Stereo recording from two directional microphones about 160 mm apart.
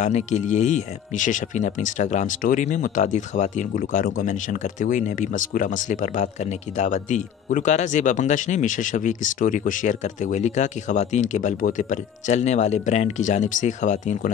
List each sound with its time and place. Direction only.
0.0 s a man's voice: 45° left (ahead or behind)